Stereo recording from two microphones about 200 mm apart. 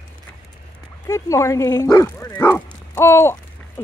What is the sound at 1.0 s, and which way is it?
Speech, 15° left (ahead or behind).